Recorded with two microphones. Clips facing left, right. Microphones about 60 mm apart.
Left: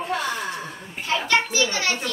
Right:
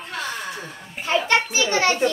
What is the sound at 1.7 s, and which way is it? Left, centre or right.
Speech, right.